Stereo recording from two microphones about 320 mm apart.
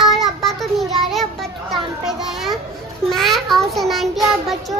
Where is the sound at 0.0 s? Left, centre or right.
Centre.